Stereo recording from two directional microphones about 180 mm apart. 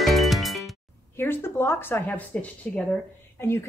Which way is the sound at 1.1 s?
15° left (ahead or behind).